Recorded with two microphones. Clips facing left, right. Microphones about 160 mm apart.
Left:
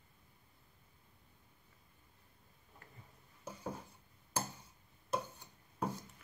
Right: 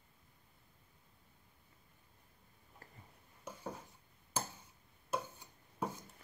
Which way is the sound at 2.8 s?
35° right (ahead or behind).